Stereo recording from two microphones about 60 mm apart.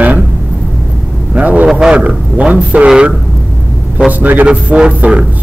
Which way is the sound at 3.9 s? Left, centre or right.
Right.